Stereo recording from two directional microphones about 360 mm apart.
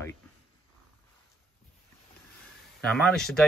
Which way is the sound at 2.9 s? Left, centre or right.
Centre.